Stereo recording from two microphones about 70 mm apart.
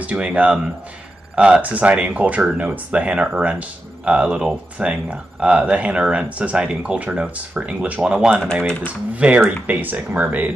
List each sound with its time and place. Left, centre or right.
0.0 s speech: centre